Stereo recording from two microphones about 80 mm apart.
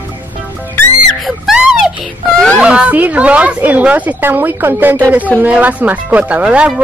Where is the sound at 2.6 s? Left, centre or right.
Centre.